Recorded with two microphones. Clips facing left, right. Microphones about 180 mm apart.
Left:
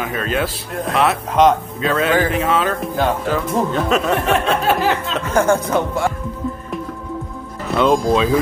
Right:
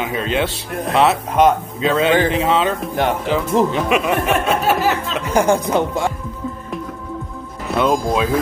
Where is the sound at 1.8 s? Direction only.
25° right (ahead or behind).